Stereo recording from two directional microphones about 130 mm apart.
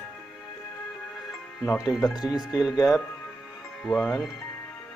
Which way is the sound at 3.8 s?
5° left (ahead or behind).